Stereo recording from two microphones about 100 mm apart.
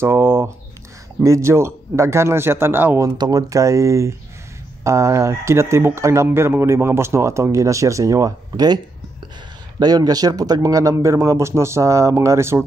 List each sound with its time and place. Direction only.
0.0 s speech: 25° right (ahead or behind)
3.0 s speech: 35° right (ahead or behind)